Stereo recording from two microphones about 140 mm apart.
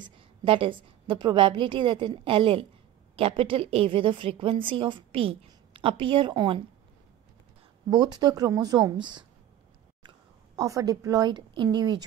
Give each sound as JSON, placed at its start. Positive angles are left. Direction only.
{"t": 0.0, "sound": "a woman's voice", "side_deg": -35}
{"t": 7.9, "sound": "speech", "side_deg": -30}